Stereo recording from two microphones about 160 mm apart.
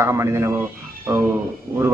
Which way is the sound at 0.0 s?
20° right (ahead or behind).